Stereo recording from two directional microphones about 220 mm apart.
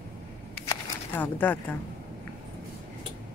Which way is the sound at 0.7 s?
10° left (ahead or behind).